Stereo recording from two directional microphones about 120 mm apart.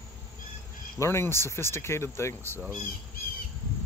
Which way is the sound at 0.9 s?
25° left (ahead or behind).